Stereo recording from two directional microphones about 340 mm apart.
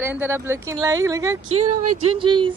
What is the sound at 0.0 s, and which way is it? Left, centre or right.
Speech, centre.